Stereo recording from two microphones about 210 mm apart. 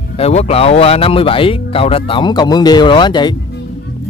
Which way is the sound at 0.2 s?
30° left (ahead or behind).